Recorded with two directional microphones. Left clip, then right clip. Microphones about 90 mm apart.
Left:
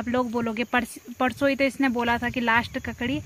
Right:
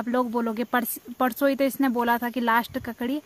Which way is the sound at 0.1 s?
5° right (ahead or behind).